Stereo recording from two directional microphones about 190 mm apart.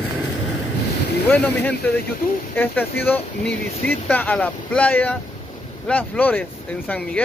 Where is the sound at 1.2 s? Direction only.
10° left (ahead or behind).